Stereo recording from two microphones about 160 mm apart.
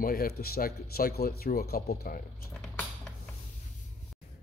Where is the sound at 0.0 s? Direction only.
70° left (ahead or behind).